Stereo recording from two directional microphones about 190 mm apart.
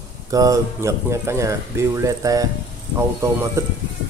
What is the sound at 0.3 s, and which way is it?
Speech, 20° right (ahead or behind).